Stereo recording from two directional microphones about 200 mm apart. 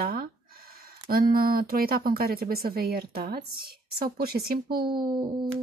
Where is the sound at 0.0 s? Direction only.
45° right (ahead or behind).